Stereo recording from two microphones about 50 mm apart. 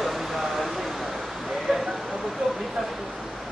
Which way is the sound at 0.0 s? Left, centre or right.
Centre.